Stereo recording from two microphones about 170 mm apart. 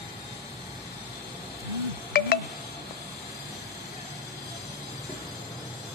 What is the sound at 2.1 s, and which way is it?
Music, 60° left (ahead or behind).